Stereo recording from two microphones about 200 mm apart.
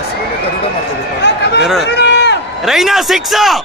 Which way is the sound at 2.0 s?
60° left (ahead or behind).